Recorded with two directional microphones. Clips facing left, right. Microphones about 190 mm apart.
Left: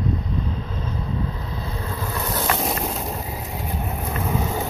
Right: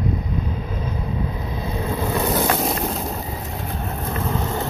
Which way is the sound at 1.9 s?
20° right (ahead or behind).